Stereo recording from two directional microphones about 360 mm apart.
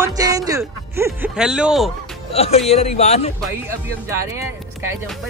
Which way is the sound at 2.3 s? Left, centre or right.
Centre.